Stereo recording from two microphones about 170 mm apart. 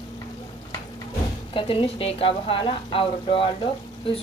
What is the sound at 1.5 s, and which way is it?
Speech, 30° left (ahead or behind).